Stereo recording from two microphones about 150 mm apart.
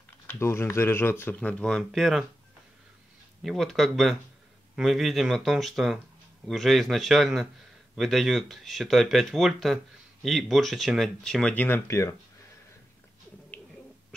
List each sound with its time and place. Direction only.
0.3 s speech: 15° left (ahead or behind); by 2.2 s centre (ahead or behind)
3.4 s speech: centre (ahead or behind); by 12.2 s 20° left (ahead or behind)